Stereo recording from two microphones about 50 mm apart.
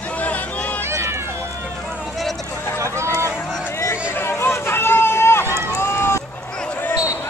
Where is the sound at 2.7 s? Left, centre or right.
Right.